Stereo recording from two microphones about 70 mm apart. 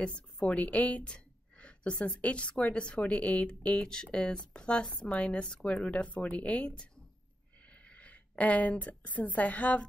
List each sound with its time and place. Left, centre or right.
0.0 s a woman's voice: centre